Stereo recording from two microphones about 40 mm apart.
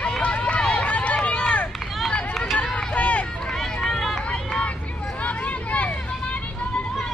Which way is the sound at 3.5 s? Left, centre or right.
Centre.